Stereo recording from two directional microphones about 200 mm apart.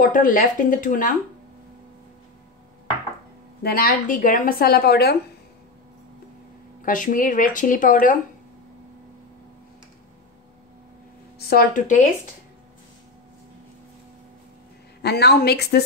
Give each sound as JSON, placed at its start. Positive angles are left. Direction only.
{"t": 0.0, "sound": "a woman's voice", "side_deg": 45}
{"t": 3.6, "sound": "a woman's voice", "side_deg": 45}
{"t": 6.8, "sound": "speech", "side_deg": 40}
{"t": 11.3, "sound": "a woman's voice", "side_deg": 50}
{"t": 15.0, "sound": "a woman's voice", "side_deg": 55}